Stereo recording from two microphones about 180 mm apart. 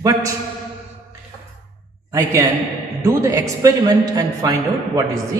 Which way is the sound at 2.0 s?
15° right (ahead or behind).